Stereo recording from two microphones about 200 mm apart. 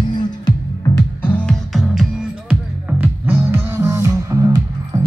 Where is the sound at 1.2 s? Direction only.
5° left (ahead or behind).